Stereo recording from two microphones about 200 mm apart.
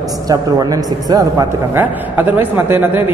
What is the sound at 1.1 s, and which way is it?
A man's voice, 15° right (ahead or behind).